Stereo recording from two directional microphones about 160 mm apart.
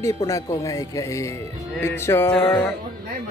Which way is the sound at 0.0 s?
20° left (ahead or behind).